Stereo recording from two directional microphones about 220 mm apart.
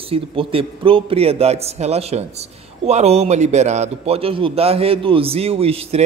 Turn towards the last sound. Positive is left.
turn(degrees=-25)  # may be behind; listen again after turning